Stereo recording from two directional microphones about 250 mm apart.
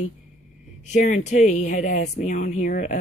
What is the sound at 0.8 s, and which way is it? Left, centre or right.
A woman's voice, left.